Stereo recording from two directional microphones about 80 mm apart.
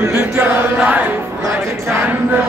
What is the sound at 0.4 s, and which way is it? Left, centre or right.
Chant, right.